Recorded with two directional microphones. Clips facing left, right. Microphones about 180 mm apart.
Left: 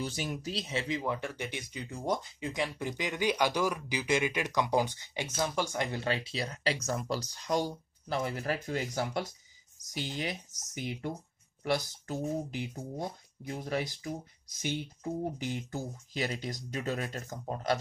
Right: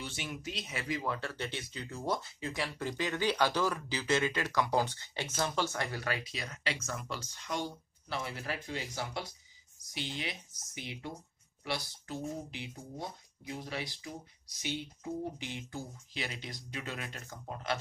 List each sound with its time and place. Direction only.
0.0 s speech: 40° left (ahead or behind)
15.3 s speech: 45° left (ahead or behind)